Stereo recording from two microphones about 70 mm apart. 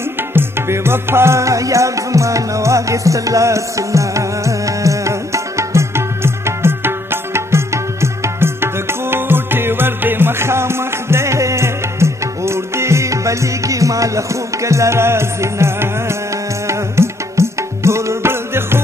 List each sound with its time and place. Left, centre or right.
0.3 s music: right